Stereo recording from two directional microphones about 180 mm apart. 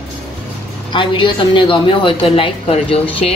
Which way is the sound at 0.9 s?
30° left (ahead or behind).